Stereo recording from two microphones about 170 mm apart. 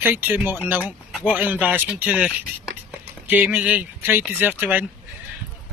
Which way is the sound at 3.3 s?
10° right (ahead or behind).